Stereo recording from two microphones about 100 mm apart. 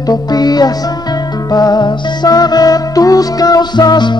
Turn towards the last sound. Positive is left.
turn(degrees=45)  # may be behind; listen again after turning